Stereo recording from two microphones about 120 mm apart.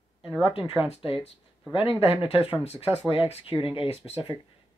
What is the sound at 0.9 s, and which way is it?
Speech, 50° left (ahead or behind).